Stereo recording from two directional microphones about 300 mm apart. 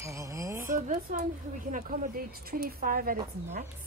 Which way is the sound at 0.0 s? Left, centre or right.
Centre.